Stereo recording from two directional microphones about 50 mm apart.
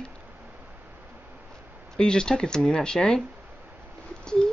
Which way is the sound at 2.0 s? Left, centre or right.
Centre.